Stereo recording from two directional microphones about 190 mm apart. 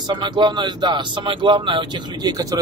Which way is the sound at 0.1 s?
25° right (ahead or behind).